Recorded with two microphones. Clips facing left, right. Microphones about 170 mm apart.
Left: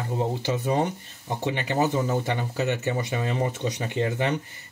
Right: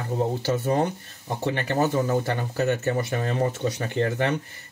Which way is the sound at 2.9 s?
15° left (ahead or behind).